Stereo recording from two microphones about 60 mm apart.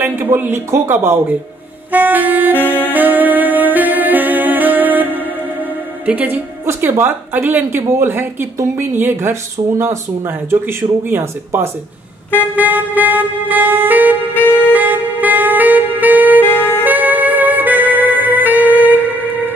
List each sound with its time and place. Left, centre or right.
0.0 s speech: right
1.9 s clarinet: right
2.5 s saxophone: left
2.9 s music: right
6.8 s speech: right
12.5 s music: right
14.3 s saxophone: left
14.7 s saxophone: right
16.8 s music: right